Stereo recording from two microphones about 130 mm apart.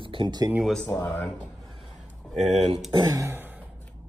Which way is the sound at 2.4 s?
60° right (ahead or behind).